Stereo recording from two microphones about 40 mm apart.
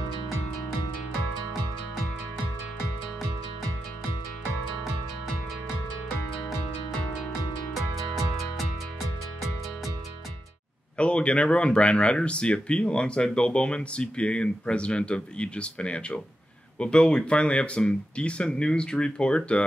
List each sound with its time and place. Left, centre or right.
11.0 s speech: left